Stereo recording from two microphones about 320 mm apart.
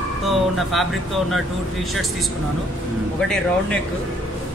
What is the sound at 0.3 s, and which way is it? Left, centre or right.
Speech, centre.